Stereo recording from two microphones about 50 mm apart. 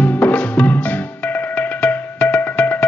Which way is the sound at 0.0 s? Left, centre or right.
Left.